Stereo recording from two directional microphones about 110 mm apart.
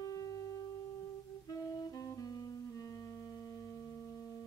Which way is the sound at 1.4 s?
30° left (ahead or behind).